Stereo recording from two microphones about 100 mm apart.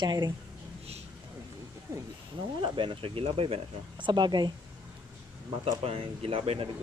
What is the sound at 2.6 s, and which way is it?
Speech, 60° right (ahead or behind).